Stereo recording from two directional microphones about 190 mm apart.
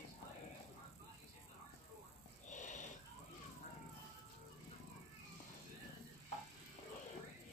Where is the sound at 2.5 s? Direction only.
40° left (ahead or behind).